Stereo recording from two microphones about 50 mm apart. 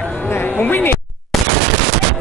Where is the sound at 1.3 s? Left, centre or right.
Centre.